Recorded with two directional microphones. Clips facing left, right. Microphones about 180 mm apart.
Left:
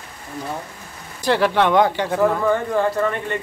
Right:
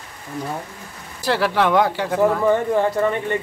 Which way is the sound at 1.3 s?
5° right (ahead or behind).